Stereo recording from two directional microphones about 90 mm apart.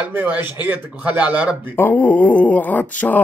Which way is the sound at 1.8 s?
20° left (ahead or behind).